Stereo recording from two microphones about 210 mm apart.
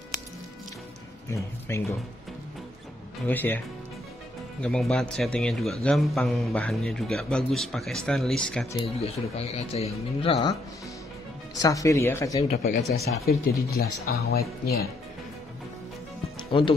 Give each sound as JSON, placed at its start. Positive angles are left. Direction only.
{"t": 1.3, "sound": "speech", "side_deg": 15}
{"t": 3.3, "sound": "a man's voice", "side_deg": 10}
{"t": 8.8, "sound": "speech", "side_deg": 30}
{"t": 11.5, "sound": "speech", "side_deg": 15}
{"t": 12.4, "sound": "speech", "side_deg": 30}
{"t": 13.0, "sound": "speech", "side_deg": 45}